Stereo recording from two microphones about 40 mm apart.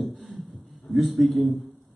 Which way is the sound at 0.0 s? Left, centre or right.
Centre.